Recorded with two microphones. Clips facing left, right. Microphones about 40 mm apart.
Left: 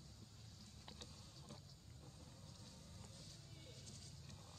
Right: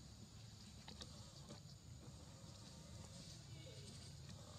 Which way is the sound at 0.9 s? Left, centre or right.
Centre.